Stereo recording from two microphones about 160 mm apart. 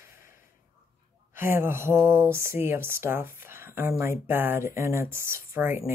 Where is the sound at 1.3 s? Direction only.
15° right (ahead or behind).